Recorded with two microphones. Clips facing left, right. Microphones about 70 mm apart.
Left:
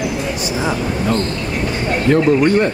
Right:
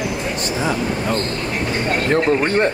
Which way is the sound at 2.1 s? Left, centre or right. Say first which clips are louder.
Left 6 dB; right.